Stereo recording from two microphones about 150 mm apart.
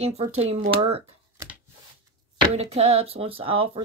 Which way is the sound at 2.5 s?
45° right (ahead or behind).